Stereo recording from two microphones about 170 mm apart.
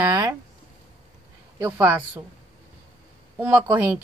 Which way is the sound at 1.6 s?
15° right (ahead or behind).